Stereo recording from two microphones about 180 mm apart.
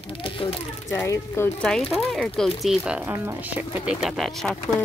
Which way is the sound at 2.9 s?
10° right (ahead or behind).